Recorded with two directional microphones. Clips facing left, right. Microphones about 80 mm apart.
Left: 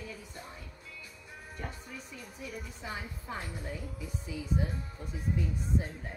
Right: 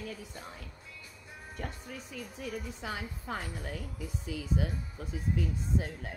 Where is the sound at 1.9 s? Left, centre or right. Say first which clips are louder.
Right 3 dB; right.